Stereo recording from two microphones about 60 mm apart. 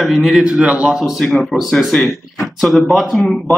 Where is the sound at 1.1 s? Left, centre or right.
Centre.